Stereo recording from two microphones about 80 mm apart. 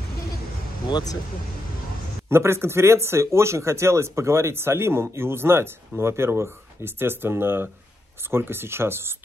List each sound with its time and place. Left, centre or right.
2.2 s speech: right